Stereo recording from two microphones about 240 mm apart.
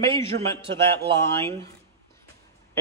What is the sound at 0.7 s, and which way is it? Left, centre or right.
Speech, right.